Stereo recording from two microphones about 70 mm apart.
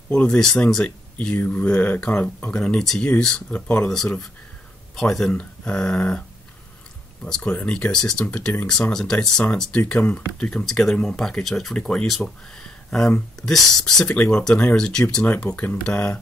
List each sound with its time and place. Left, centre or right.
0.1 s speech: centre
5.3 s speech: centre
7.2 s speech: centre
10.6 s speech: centre
14.1 s speech: centre
15.5 s speech: left